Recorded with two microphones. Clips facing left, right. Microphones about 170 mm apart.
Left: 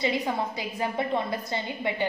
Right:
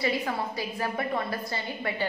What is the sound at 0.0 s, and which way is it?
A woman's voice, 20° left (ahead or behind).